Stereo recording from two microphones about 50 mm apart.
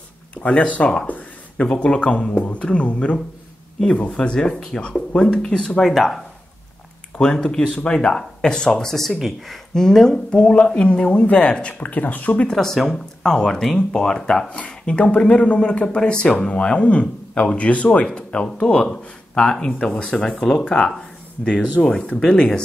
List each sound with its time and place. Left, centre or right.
0.4 s speech: left
1.0 s a sound: left
1.7 s speech: centre
5.6 s speech: centre
7.3 s speech: centre
10.4 s speech: left
12.4 s speech: centre